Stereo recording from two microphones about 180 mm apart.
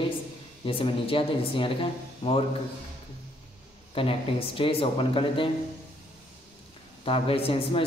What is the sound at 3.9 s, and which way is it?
Speech, 30° left (ahead or behind).